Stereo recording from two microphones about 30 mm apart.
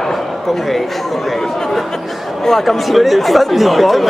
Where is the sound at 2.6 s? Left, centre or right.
Centre.